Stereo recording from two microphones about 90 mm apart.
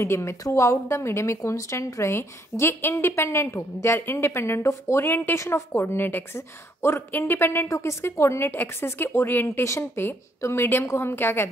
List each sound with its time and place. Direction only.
0.0 s speech: 30° left (ahead or behind)